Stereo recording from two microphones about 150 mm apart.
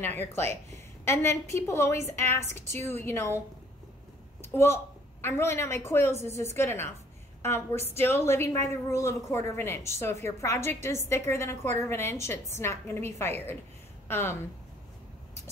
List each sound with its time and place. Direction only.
0.1 s a woman's voice: 15° left (ahead or behind)
4.4 s a woman's voice: 15° left (ahead or behind)